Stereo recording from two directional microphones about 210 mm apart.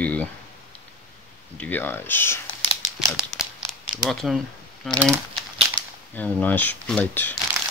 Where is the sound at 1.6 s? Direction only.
10° left (ahead or behind).